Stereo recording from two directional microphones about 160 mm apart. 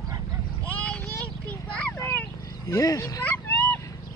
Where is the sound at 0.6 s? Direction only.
10° left (ahead or behind).